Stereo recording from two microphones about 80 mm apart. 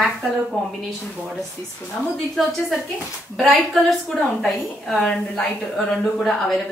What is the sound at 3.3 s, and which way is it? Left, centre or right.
A woman's voice, centre.